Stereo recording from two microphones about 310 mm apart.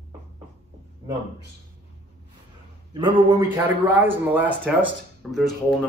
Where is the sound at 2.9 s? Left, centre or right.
Centre.